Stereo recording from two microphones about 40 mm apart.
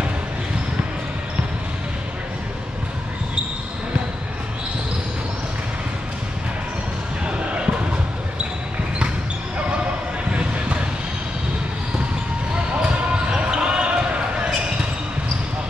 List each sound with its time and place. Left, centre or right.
7.2 s basketball bounce: right
13.1 s basketball bounce: right